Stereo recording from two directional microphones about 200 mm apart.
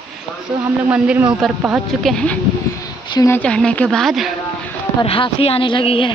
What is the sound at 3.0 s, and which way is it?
Speech, 20° left (ahead or behind).